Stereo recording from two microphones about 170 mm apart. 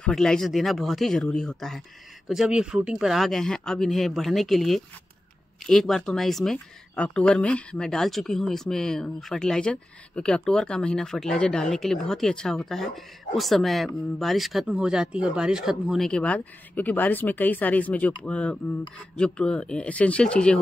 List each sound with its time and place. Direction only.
0.0 s speech: 5° left (ahead or behind)